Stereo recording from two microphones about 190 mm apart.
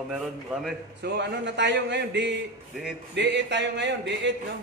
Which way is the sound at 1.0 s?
60° right (ahead or behind).